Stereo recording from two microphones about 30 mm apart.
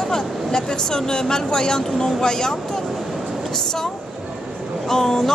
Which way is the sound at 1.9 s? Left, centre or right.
Centre.